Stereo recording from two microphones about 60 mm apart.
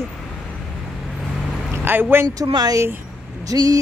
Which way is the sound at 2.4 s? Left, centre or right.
Right.